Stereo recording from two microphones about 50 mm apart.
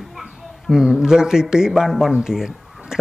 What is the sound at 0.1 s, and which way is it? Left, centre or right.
A woman's voice, centre.